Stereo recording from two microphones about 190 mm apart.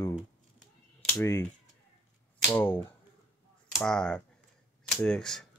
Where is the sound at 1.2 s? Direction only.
15° left (ahead or behind).